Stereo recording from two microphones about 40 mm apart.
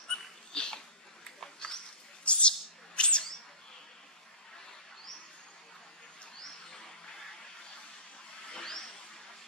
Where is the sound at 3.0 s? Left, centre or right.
Left.